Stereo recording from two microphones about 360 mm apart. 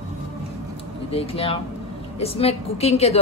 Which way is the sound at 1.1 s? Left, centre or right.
Centre.